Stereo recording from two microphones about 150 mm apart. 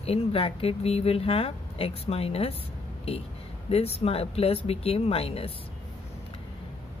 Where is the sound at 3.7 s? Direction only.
40° left (ahead or behind).